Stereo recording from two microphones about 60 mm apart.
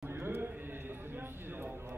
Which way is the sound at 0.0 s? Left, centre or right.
Right.